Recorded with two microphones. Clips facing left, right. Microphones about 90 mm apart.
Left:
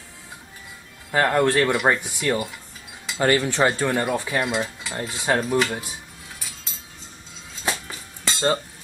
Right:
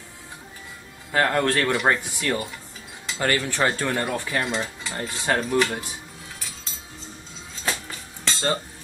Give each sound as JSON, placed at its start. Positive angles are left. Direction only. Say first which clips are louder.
{"t": 1.1, "sound": "cutlery", "louder": "left 2 dB", "side_deg": 10}
{"t": 3.2, "sound": "cutlery", "louder": "left 4 dB", "side_deg": 20}
{"t": 7.6, "sound": "music", "louder": "left 1 dB", "side_deg": 15}